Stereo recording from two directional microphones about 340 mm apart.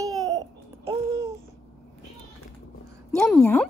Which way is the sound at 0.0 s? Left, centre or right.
Centre.